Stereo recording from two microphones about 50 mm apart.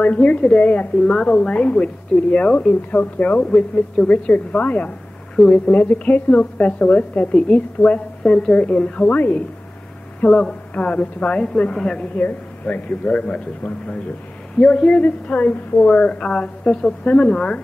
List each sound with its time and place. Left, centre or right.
0.0 s a woman's voice: left
1.5 s a woman's voice: left
2.9 s a woman's voice: left
3.4 s a woman's voice: centre
9.1 s a man's voice: left
10.2 s a woman's voice: centre
12.2 s a man's voice: left
14.6 s a woman's voice: centre
15.0 s a woman's voice: left